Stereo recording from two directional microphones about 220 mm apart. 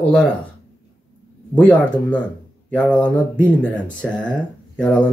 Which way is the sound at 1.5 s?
5° left (ahead or behind).